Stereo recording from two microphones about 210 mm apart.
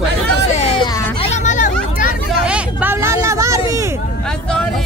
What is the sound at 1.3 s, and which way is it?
Hubbub, 35° left (ahead or behind).